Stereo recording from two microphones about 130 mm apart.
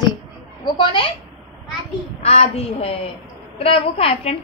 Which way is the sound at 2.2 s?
50° left (ahead or behind).